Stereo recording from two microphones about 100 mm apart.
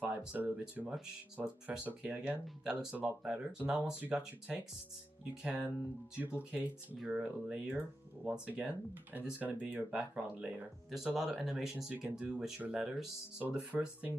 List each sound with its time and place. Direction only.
0.0 s speech: 15° right (ahead or behind)